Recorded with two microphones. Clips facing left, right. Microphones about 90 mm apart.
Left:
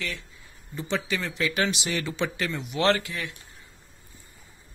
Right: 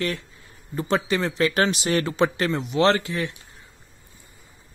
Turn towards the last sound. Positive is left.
turn(degrees=-30)  # may be behind; listen again after turning